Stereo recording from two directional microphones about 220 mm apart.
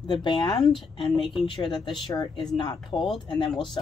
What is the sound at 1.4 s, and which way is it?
Speech, 20° left (ahead or behind).